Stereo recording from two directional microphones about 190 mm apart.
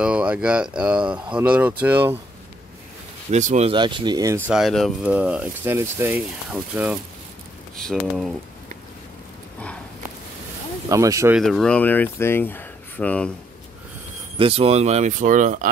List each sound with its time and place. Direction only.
0.0 s speech: 5° right (ahead or behind)
3.3 s speech: 35° right (ahead or behind)
3.7 s speech: 25° right (ahead or behind)
4.5 s speech: centre (ahead or behind)
10.9 s speech: 15° right (ahead or behind)
11.3 s speech: centre (ahead or behind)
14.4 s speech: 30° right (ahead or behind)